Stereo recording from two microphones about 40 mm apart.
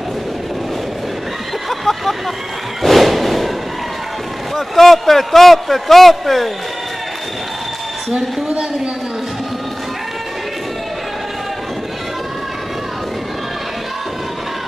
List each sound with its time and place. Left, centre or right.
1.7 s vehicle: centre
2.8 s music: centre
4.6 s a man's voice: centre